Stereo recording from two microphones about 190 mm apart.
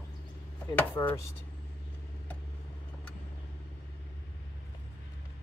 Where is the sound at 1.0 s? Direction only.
20° left (ahead or behind).